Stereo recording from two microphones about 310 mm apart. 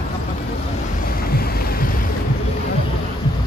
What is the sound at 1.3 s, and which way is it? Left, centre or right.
Boat, left.